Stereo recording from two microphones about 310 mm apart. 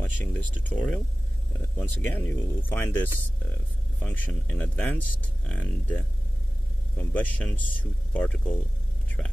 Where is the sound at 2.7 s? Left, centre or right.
Centre.